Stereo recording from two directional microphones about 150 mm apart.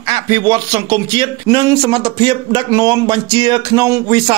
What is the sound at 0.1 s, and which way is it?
Speech, 30° right (ahead or behind).